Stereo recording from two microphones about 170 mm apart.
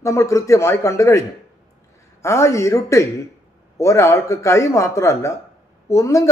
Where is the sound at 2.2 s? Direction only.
15° left (ahead or behind).